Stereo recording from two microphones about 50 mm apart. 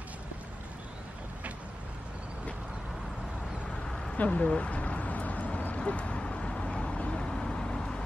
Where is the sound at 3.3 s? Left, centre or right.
Centre.